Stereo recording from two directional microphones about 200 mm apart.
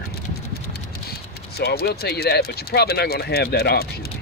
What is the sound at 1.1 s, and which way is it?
Speech, 50° left (ahead or behind).